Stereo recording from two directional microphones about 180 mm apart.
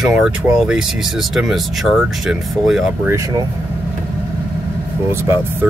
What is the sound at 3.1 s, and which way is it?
Speech, 15° right (ahead or behind).